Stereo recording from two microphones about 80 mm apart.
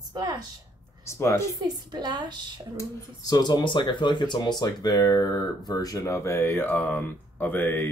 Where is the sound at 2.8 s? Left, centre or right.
Left.